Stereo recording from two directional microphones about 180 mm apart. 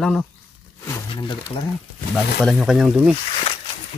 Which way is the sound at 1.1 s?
25° left (ahead or behind).